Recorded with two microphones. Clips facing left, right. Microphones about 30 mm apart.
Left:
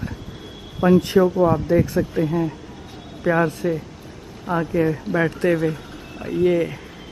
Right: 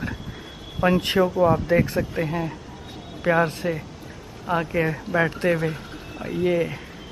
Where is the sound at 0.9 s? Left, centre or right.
Right.